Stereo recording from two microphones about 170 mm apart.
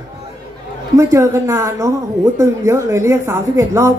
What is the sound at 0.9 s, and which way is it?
Speech, 20° right (ahead or behind).